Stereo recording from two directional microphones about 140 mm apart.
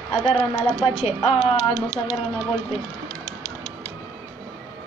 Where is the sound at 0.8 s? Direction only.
45° left (ahead or behind).